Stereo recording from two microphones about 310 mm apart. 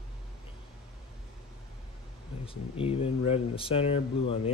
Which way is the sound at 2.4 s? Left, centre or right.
Centre.